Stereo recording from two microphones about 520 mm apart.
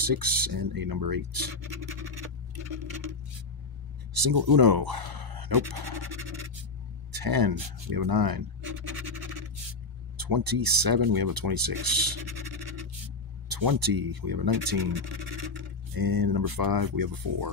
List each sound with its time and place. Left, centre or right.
0.0 s speech: right
2.5 s clock: right
4.1 s speech: right